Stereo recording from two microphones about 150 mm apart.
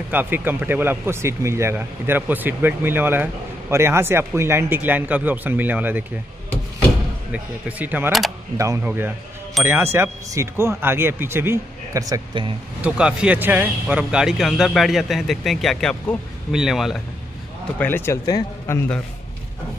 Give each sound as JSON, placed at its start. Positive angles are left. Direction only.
{"t": 0.1, "sound": "speech", "side_deg": -10}
{"t": 7.3, "sound": "speech", "side_deg": -10}
{"t": 9.6, "sound": "speech", "side_deg": 0}
{"t": 9.9, "sound": "speech", "side_deg": -15}
{"t": 12.8, "sound": "speech", "side_deg": -5}
{"t": 17.7, "sound": "speech", "side_deg": 15}